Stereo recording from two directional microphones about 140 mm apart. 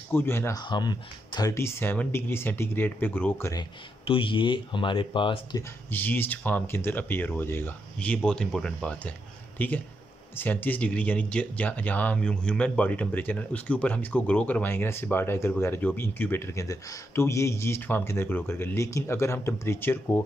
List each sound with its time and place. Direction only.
0.1 s speech: 15° left (ahead or behind)
0.6 s speech: 30° left (ahead or behind)
1.5 s speech: 15° left (ahead or behind)
3.5 s speech: 40° left (ahead or behind)
5.6 s speech: 15° left (ahead or behind)